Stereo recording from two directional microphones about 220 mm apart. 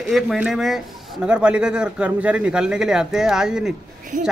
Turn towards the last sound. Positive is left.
turn(degrees=-35)  # may be behind; listen again after turning